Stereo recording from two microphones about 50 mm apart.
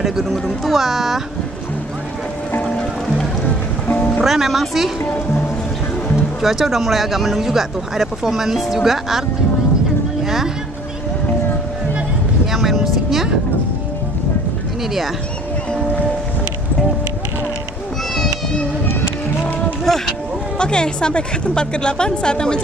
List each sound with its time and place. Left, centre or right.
0.0 s speech: centre
3.8 s music: left
4.2 s speech: centre
5.0 s speech: left
6.4 s speech: centre
10.2 s speech: centre
12.5 s vehicle: centre
19.4 s run: centre
20.5 s a woman's voice: centre